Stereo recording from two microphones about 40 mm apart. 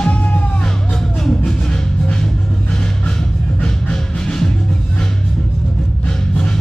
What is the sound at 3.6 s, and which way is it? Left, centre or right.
Music, centre.